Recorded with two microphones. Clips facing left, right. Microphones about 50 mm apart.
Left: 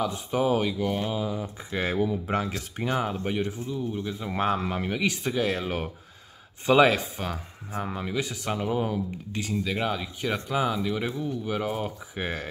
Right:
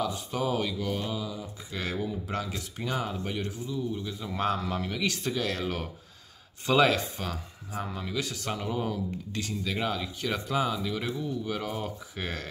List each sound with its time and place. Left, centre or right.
0.1 s speech: left